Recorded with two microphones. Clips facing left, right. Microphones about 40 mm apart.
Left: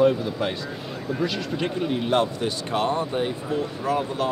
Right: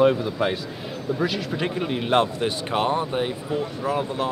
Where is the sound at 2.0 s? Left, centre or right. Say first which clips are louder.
Right 3 dB; right; by 4.3 s centre.